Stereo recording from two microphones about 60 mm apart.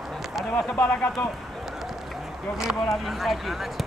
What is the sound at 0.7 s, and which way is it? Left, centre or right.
Speech, left.